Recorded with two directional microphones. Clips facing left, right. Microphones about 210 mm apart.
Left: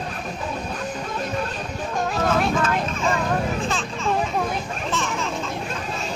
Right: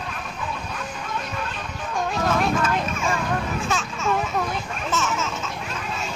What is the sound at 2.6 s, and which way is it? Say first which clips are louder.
Vehicle: left 1 dB; 10° right (ahead or behind).